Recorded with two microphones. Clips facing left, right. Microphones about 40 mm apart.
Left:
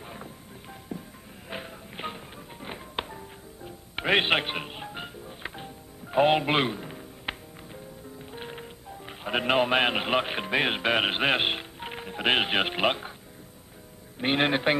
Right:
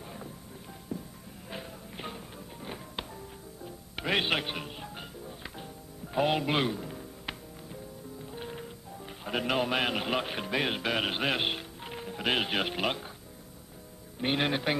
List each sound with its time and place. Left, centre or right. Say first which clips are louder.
0.9 s music: even; left
6.1 s music: left 5 dB; left
8.3 s speech: left 1 dB; left
14.2 s a man's voice: left 5 dB; left